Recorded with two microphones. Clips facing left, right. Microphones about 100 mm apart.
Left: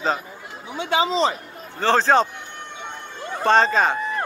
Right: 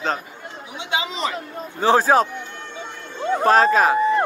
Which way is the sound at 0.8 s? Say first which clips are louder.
Left 6 dB; 45° left (ahead or behind).